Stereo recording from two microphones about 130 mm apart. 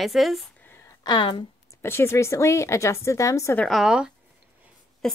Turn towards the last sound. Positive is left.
turn(degrees=5)  # may be behind; listen again after turning